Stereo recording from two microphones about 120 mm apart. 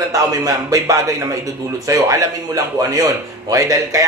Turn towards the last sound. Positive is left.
turn(degrees=-25)  # may be behind; listen again after turning